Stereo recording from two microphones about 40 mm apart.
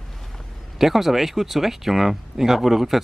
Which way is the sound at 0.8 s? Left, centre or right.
Centre.